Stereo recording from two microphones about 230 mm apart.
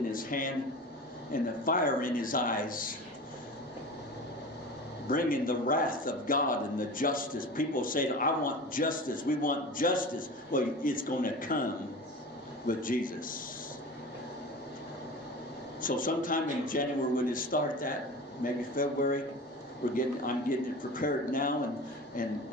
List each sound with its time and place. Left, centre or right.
0.1 s a man's voice: left
5.0 s a man's voice: left
12.6 s a man's voice: left
15.8 s a man's voice: left